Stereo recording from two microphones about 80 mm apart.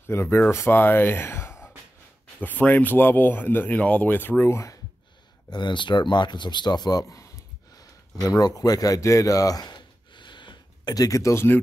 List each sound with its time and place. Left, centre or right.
0.1 s speech: left
2.4 s speech: left
4.5 s speech: left
5.5 s a man's voice: left
7.7 s a sound: left
11.0 s speech: left